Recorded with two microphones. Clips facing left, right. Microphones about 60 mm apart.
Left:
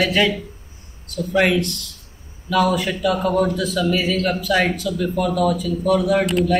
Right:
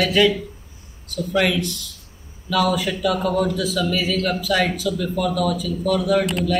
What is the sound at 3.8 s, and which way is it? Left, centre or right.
Speech, left.